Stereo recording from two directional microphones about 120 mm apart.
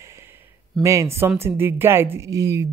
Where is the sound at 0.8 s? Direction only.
25° right (ahead or behind).